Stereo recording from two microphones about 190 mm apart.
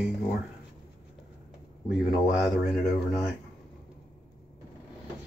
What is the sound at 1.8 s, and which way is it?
Speech, 5° right (ahead or behind).